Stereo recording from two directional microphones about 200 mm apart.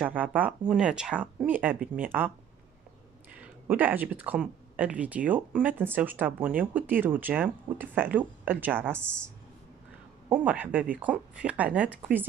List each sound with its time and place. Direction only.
0.0 s speech: 10° right (ahead or behind)
3.3 s speech: 10° right (ahead or behind)
10.3 s speech: 5° right (ahead or behind)